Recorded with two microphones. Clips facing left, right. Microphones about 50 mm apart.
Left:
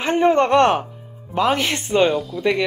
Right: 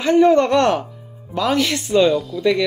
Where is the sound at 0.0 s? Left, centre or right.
Left.